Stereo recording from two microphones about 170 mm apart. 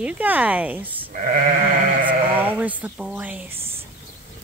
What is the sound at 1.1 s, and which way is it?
Sheep, 50° right (ahead or behind).